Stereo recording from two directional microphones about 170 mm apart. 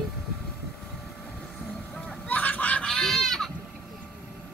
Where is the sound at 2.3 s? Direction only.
10° left (ahead or behind).